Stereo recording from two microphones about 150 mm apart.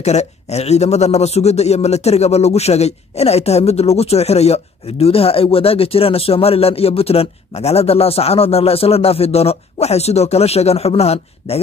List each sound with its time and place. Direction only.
0.0 s speech: 45° left (ahead or behind)